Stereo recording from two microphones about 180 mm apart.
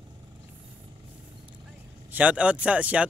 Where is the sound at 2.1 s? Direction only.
10° right (ahead or behind).